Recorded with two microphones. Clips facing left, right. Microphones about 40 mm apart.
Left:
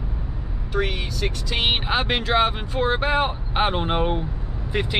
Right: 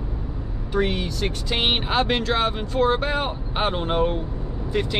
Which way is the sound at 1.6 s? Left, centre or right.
Centre.